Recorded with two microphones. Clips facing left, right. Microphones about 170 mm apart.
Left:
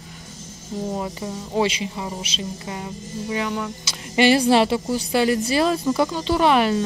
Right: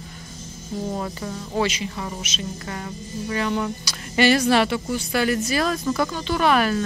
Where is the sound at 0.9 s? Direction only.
15° left (ahead or behind).